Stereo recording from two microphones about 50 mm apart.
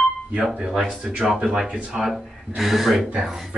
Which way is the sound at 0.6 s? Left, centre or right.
Centre.